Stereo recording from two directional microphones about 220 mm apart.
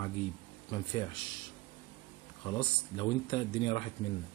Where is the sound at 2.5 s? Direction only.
20° left (ahead or behind).